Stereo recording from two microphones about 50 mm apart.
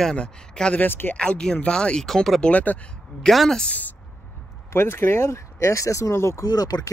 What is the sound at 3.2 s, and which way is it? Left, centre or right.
Speech, centre.